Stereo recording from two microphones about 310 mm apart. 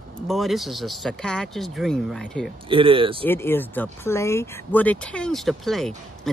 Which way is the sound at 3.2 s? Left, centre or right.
Centre.